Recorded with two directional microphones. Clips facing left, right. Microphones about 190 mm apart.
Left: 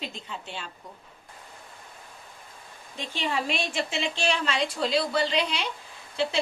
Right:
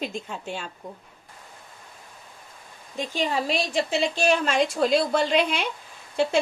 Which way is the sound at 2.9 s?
40° right (ahead or behind).